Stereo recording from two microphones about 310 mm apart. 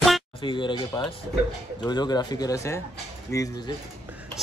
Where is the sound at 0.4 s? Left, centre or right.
Centre.